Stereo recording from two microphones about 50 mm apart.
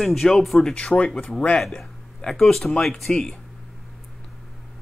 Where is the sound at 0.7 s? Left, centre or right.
Left.